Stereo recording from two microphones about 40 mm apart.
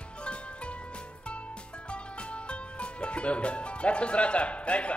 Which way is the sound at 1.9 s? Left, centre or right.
Left.